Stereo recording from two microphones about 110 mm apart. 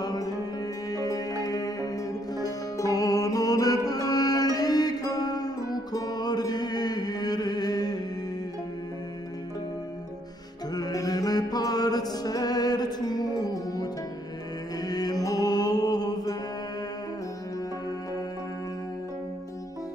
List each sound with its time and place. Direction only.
0.0 s music: 35° left (ahead or behind)
10.7 s mantra: 35° left (ahead or behind)
14.8 s music: 35° left (ahead or behind)